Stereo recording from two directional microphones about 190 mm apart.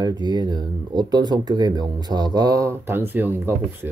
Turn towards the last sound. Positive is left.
turn(degrees=-10)  # may be behind; listen again after turning